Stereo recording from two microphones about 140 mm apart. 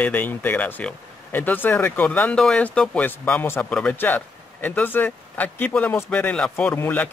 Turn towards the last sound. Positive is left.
turn(degrees=15)  # may be behind; listen again after turning